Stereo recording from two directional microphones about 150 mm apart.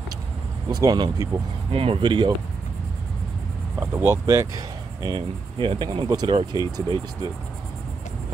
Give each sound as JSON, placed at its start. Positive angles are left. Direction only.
{"t": 0.7, "sound": "speech", "side_deg": -25}
{"t": 1.7, "sound": "speech", "side_deg": -40}
{"t": 3.8, "sound": "speech", "side_deg": -15}
{"t": 5.0, "sound": "speech", "side_deg": -35}